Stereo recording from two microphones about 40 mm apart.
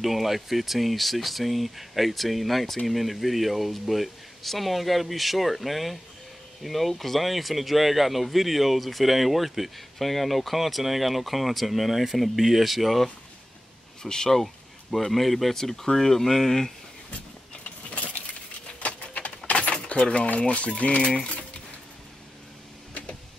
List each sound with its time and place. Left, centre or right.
0.0 s speech: centre
14.0 s speech: centre
14.4 s speech: centre
18.8 s a sound: left
19.7 s keys jangling: left
20.2 s speech: left